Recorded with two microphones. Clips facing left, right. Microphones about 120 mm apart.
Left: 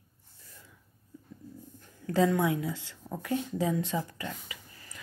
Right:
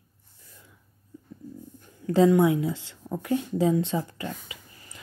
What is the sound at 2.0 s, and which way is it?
Speech, 25° right (ahead or behind).